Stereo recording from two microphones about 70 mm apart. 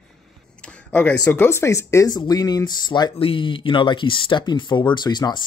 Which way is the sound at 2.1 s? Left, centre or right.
Left.